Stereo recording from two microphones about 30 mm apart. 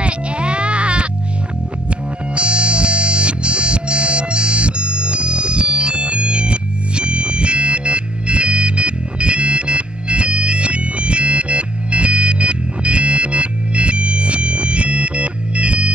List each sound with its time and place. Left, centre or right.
0.0 s music: right